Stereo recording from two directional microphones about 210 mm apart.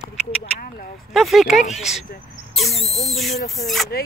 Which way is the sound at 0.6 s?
45° left (ahead or behind).